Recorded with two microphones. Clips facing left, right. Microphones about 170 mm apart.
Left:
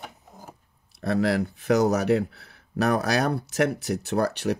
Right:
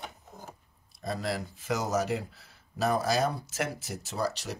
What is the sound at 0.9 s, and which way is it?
Speech, 65° left (ahead or behind).